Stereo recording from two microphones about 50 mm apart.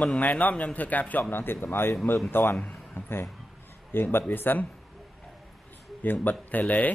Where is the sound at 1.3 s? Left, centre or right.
Left.